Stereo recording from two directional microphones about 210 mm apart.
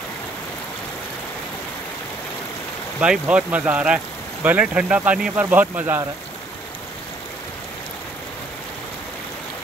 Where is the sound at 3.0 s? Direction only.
5° right (ahead or behind).